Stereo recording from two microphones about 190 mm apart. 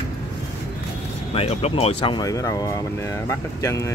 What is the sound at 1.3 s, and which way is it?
Speech, 30° left (ahead or behind).